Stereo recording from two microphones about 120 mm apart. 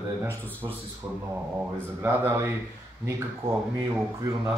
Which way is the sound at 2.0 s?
25° right (ahead or behind).